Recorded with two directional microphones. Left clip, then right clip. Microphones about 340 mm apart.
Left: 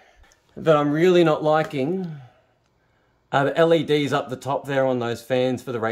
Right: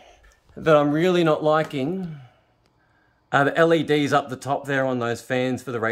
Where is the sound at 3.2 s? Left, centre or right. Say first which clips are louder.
Even; centre.